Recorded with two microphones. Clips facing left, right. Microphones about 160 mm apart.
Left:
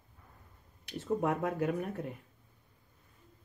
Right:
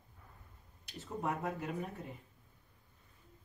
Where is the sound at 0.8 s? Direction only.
60° left (ahead or behind).